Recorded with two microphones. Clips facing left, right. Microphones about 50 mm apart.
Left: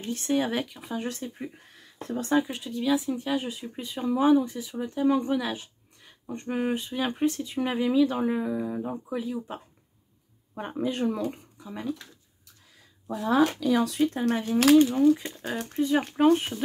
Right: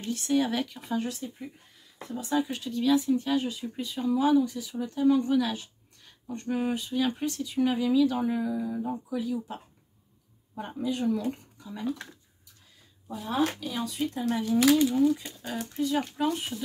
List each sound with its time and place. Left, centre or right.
0.0 s speech: left
0.7 s speech: centre
1.0 s speech: left
2.0 s speech: left
2.4 s speech: centre; by 11.2 s left
13.0 s speech: left
14.1 s speech: left
14.8 s speech: left
15.5 s speech: left
15.8 s speech: left